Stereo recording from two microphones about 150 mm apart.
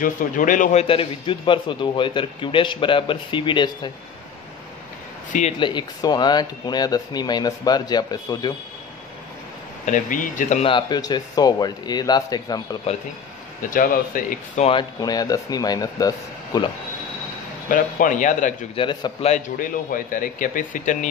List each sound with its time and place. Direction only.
0.0 s speech: 60° left (ahead or behind)
0.8 s speech: 35° left (ahead or behind)
5.6 s speech: 30° left (ahead or behind)
9.8 s speech: 60° left (ahead or behind)
10.6 s speech: 30° left (ahead or behind)
13.6 s speech: 65° left (ahead or behind)
14.6 s speech: 35° left (ahead or behind)
17.6 s speech: 60° left (ahead or behind)
18.8 s speech: 30° left (ahead or behind)
19.2 s speech: 60° left (ahead or behind)